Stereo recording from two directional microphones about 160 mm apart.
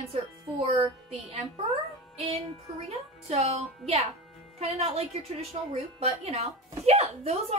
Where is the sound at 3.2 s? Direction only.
40° right (ahead or behind).